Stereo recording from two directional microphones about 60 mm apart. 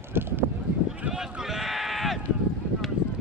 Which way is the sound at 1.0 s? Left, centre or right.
Right.